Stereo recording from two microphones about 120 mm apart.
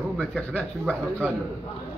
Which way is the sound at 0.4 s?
10° left (ahead or behind).